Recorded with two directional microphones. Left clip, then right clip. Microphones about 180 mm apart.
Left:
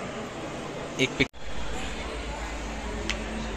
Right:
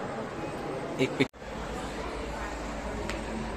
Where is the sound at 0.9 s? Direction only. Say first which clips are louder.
Left 3 dB; 5° right (ahead or behind).